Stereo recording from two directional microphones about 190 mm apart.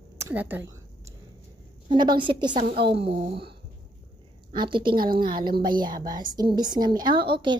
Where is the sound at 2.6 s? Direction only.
55° right (ahead or behind).